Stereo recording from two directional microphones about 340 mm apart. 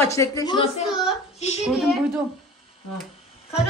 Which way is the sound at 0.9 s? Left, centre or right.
Centre.